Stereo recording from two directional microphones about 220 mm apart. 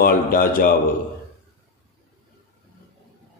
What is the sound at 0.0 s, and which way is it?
Speech, 40° left (ahead or behind).